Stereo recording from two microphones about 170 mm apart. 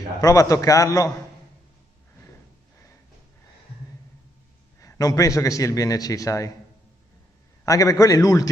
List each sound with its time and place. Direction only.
0.2 s a man's voice: 20° left (ahead or behind)
4.7 s a man's voice: 20° left (ahead or behind)
7.6 s a man's voice: 20° left (ahead or behind)